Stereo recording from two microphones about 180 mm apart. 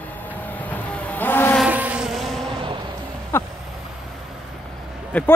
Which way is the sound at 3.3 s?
10° left (ahead or behind).